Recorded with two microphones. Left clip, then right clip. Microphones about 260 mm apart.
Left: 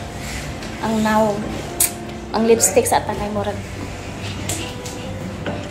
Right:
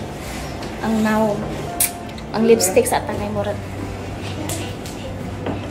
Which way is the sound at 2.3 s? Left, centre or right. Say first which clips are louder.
Right 1 dB; centre.